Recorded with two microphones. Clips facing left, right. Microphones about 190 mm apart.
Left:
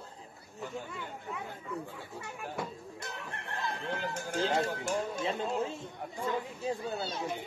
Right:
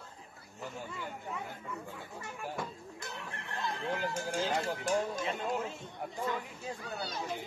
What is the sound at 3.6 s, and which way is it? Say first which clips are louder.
Speech: right 1 dB; centre (ahead or behind).